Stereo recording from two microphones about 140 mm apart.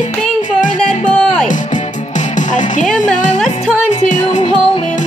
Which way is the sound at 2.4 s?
65° left (ahead or behind).